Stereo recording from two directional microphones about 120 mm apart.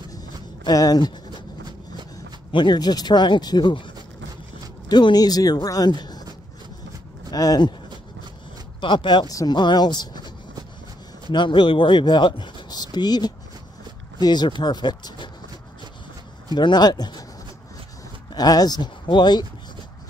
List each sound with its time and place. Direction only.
0.7 s speech: 30° left (ahead or behind)
2.5 s speech: 40° left (ahead or behind)
7.2 s speech: 30° left (ahead or behind)
8.8 s speech: 40° left (ahead or behind)
11.3 s speech: 40° left (ahead or behind)
16.5 s speech: 35° left (ahead or behind)
18.3 s speech: 35° left (ahead or behind)